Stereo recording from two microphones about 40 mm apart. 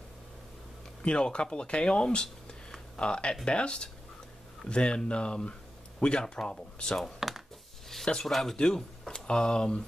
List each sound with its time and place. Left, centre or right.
1.0 s speech: left
6.2 s speech: centre
7.2 s a sound: centre
8.0 s speech: centre
8.3 s speech: centre
8.5 s speech: centre